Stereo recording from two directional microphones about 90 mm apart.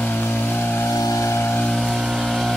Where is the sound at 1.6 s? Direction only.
5° left (ahead or behind).